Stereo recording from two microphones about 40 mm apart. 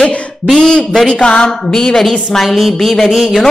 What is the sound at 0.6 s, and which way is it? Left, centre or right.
Speech, left.